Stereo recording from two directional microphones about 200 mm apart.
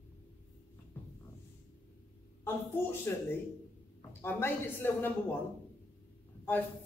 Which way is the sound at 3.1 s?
10° left (ahead or behind).